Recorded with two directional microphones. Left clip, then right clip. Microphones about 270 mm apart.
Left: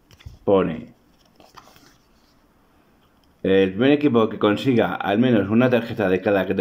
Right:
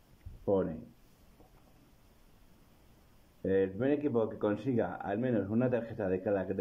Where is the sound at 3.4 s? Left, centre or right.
Centre.